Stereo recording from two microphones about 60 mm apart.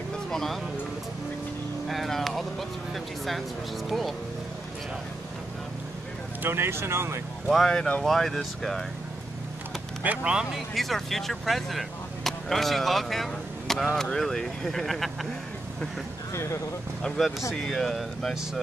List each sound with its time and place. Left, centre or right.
0.3 s speech: centre
1.9 s vehicle: centre
2.9 s speech: centre
6.4 s speech: right
7.4 s speech: centre
10.0 s speech: centre
10.5 s speech: centre
17.6 s speech: centre